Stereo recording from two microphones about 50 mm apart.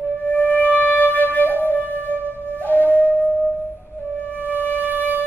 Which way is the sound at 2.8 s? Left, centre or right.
Right.